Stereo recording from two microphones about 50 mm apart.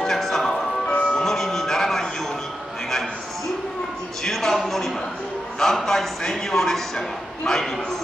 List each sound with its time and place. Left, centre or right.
0.0 s music: centre
0.8 s music: left
1.2 s a sound: centre
4.2 s music: centre
5.6 s a man's voice: centre